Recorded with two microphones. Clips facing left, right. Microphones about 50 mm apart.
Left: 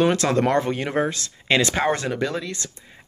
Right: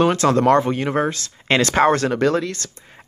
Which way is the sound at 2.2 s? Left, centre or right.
Right.